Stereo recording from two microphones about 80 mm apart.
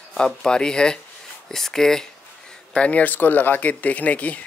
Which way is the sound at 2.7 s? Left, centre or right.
Centre.